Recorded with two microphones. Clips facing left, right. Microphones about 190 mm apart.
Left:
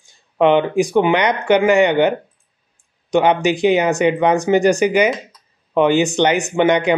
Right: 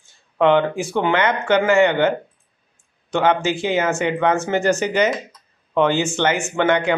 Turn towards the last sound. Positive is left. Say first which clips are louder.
# left 3 dB
turn(degrees=15)  # may be behind; listen again after turning